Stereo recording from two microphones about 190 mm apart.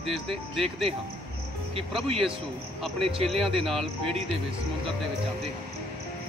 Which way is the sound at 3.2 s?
Centre (ahead or behind).